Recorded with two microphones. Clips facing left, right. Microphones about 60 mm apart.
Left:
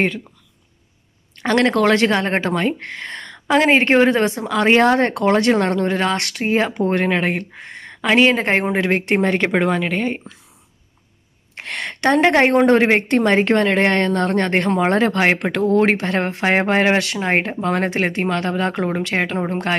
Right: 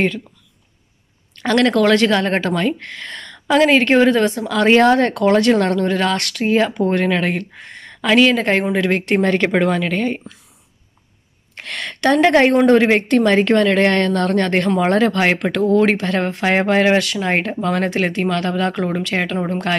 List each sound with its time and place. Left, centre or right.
1.3 s speech: left
11.5 s speech: left